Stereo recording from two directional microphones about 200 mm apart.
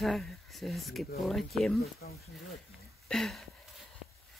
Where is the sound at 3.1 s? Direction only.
Centre (ahead or behind).